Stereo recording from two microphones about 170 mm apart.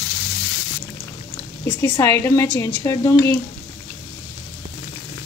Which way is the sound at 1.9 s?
15° left (ahead or behind).